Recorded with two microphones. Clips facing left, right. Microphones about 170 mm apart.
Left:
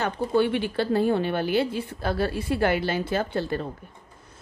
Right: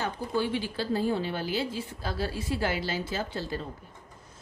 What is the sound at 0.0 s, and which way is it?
A woman's voice, 65° left (ahead or behind).